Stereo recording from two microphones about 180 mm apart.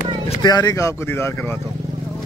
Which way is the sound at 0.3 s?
25° left (ahead or behind).